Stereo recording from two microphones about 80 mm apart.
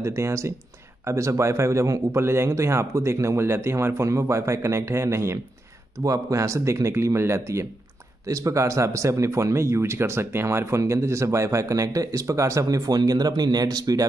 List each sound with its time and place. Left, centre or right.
0.0 s speech: right